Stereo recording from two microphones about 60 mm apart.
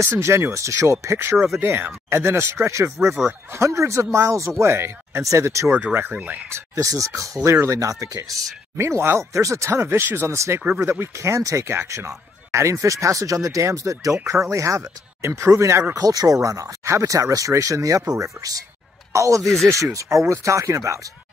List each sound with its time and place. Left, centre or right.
0.0 s speech: right
6.1 s speech: right
6.5 s speech: right
8.7 s speech: right
15.9 s speech: right
19.4 s speech: centre
19.7 s speech: right